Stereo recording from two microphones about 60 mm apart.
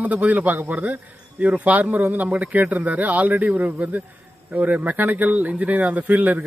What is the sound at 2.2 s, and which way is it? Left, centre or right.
Speech, centre.